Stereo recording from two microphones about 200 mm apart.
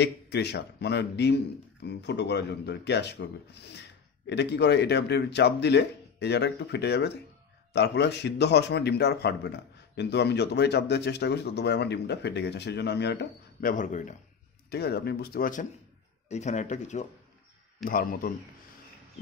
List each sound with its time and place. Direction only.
0.0 s a man's voice: 55° left (ahead or behind)
4.3 s a man's voice: 60° left (ahead or behind); by 14.1 s 40° left (ahead or behind)
14.7 s speech: 55° left (ahead or behind)
16.3 s speech: 35° left (ahead or behind)